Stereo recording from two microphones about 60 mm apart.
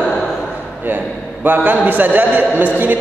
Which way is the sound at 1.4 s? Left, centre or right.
Right.